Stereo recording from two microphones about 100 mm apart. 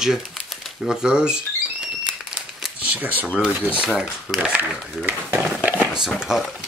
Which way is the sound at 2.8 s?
15° right (ahead or behind).